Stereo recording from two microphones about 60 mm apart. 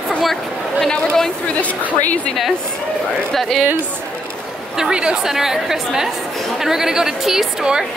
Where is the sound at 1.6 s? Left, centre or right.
Left.